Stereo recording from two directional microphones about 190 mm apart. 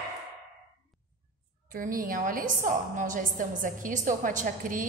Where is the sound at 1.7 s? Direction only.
45° right (ahead or behind).